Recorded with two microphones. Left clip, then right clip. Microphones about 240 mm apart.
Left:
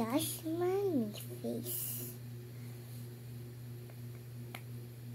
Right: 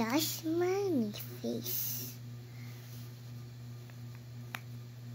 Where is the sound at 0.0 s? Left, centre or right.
Right.